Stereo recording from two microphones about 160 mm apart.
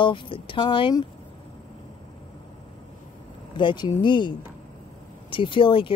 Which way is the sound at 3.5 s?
30° left (ahead or behind).